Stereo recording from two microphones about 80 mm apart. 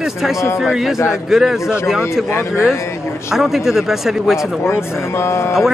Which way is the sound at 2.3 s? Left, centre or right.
Left.